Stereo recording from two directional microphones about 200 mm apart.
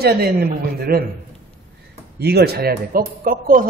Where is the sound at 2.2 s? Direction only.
55° right (ahead or behind).